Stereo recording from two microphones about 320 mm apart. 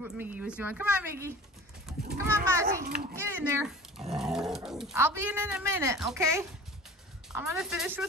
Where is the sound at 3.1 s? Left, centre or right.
Centre.